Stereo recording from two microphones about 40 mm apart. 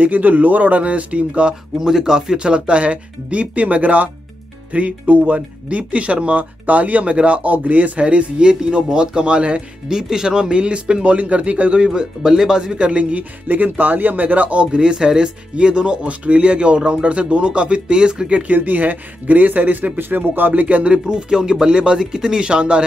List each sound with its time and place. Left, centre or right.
0.0 s speech: right
1.8 s speech: centre; by 9.6 s right
9.8 s speech: centre; by 11.9 s right
11.9 s speech: centre
13.5 s speech: right
18.3 s speech: right